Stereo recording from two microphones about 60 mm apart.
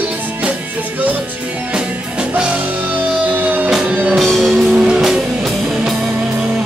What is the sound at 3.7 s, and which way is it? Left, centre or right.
Music, centre.